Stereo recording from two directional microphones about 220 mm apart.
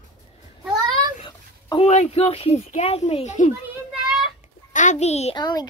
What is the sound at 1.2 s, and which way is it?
Speech, 25° left (ahead or behind).